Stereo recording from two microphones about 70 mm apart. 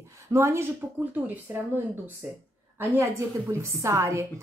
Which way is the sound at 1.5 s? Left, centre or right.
Right.